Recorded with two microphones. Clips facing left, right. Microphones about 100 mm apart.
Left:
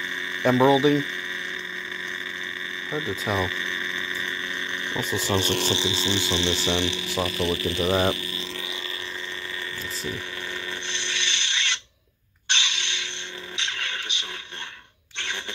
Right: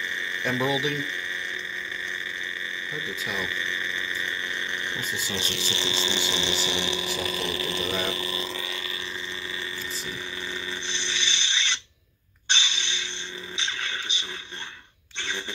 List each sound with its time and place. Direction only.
0.4 s speech: 30° left (ahead or behind)
2.9 s speech: 25° left (ahead or behind)
5.2 s speech: 50° left (ahead or behind)
5.9 s a sound: centre (ahead or behind)
6.8 s speech: 20° right (ahead or behind)
7.8 s speech: 40° left (ahead or behind)
10.7 s filing: 55° left (ahead or behind)
12.4 s a sound: 60° left (ahead or behind)